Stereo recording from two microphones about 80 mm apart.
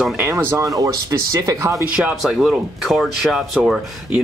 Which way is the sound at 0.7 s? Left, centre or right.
Right.